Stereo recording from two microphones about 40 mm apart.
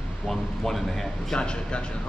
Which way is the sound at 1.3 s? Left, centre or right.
Left.